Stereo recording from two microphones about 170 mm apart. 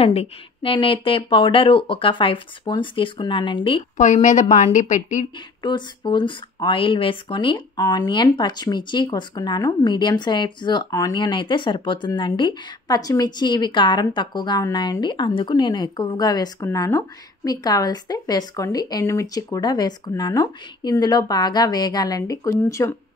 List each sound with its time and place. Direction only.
0.0 s speech: 35° left (ahead or behind)
3.9 s a woman's voice: 45° left (ahead or behind)
5.6 s speech: 25° left (ahead or behind)